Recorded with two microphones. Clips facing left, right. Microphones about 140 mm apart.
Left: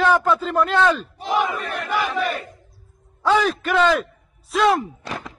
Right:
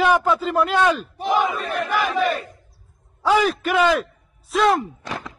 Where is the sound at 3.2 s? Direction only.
5° right (ahead or behind).